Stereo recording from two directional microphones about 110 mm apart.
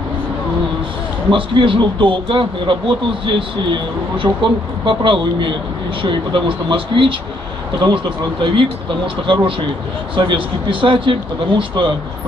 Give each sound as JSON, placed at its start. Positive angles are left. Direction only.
{"t": 1.3, "sound": "a man's voice", "side_deg": -50}